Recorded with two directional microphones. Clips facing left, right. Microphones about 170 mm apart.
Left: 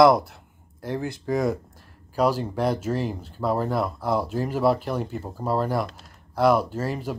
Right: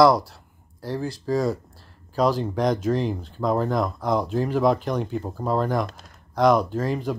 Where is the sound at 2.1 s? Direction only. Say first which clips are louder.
Right 1 dB; 10° left (ahead or behind).